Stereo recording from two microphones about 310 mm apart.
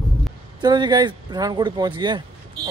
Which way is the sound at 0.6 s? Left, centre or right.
Centre.